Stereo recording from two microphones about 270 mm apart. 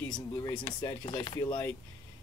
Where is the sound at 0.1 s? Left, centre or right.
Centre.